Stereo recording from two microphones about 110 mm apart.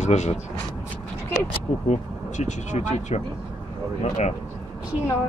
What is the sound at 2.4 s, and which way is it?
Speech, 90° left.